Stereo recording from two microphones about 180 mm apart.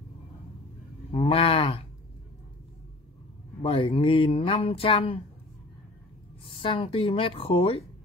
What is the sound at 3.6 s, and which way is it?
Speech, 30° left (ahead or behind).